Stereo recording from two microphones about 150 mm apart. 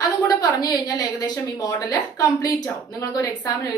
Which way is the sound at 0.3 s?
25° left (ahead or behind).